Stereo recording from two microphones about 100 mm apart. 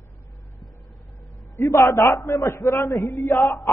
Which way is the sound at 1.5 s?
30° left (ahead or behind).